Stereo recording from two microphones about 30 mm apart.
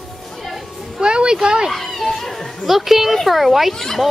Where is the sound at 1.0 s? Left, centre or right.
Right.